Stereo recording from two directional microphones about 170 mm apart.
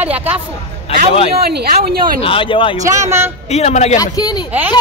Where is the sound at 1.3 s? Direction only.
70° right (ahead or behind).